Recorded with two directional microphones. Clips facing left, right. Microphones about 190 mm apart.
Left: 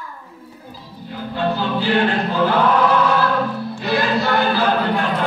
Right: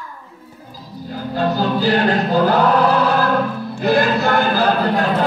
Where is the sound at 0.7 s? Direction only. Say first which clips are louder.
Right 4 dB; 40° right (ahead or behind).